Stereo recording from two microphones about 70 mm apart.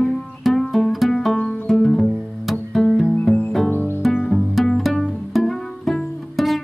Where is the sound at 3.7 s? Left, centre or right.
Left.